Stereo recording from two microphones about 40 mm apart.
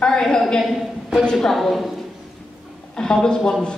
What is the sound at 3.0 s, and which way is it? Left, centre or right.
Speech, centre.